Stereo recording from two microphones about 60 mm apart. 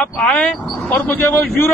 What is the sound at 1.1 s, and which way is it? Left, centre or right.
Speech, left.